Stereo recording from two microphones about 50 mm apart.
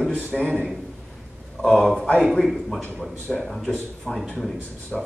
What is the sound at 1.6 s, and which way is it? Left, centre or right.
A man's voice, centre.